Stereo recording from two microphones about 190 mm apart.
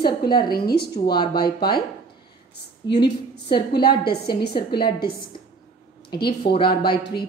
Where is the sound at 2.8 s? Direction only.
65° left (ahead or behind).